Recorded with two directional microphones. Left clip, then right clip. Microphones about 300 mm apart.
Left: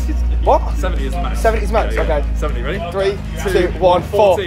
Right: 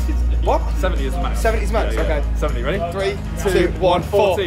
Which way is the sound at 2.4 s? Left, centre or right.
Centre.